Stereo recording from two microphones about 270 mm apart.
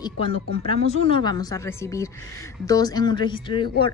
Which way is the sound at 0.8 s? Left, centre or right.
Left.